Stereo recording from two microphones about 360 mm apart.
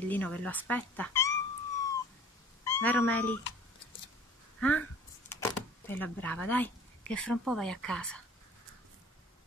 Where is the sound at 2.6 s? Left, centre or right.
Centre.